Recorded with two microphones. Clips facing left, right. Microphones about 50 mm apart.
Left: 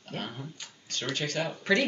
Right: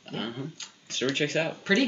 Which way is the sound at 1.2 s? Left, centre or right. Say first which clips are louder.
Right 3 dB; right.